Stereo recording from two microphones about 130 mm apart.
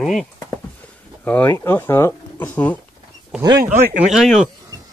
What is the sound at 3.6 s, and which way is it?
Speech, 65° right (ahead or behind).